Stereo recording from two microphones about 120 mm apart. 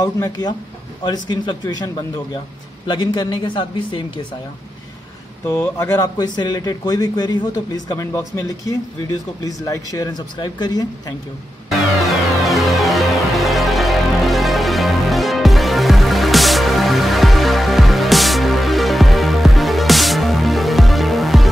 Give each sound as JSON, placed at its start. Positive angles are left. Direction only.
{"t": 0.0, "sound": "speech", "side_deg": 35}
{"t": 2.9, "sound": "speech", "side_deg": 35}
{"t": 5.5, "sound": "speech", "side_deg": 20}
{"t": 5.9, "sound": "speech", "side_deg": 35}
{"t": 8.1, "sound": "speech", "side_deg": 25}
{"t": 12.0, "sound": "music", "side_deg": 0}